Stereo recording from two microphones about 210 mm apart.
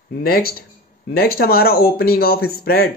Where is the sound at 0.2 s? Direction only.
45° left (ahead or behind).